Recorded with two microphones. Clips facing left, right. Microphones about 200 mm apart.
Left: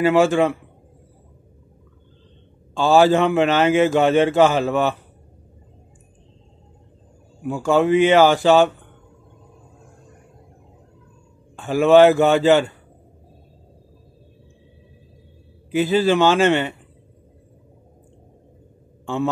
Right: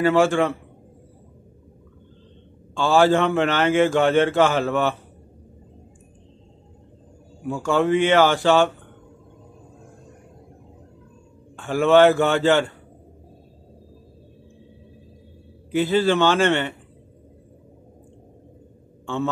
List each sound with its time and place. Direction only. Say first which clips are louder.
0.0 s a man's voice: left 2 dB; 15° left (ahead or behind)
2.7 s a man's voice: left 2 dB; 15° left (ahead or behind)
7.4 s a man's voice: left 3 dB; 15° left (ahead or behind)
11.6 s a man's voice: left 3 dB; 15° left (ahead or behind)
15.7 s a man's voice: left 2 dB; 15° left (ahead or behind)